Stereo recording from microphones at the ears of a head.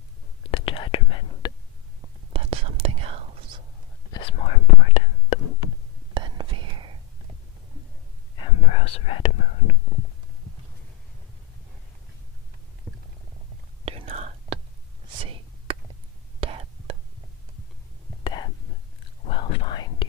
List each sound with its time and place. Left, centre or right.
0.4 s whispering: left
2.3 s whispering: right
4.1 s whispering: left
6.1 s whispering: right
8.4 s whispering: left
13.8 s whispering: right
18.2 s whispering: left